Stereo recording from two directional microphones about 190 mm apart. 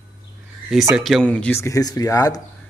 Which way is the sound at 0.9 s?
Centre (ahead or behind).